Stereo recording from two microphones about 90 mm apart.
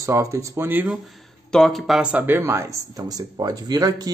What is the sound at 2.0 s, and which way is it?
Speech, 20° right (ahead or behind).